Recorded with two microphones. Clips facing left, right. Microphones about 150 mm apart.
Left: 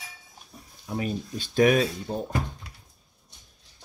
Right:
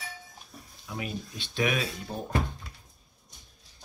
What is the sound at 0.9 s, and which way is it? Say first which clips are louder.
Speech: left 6 dB; 40° left (ahead or behind).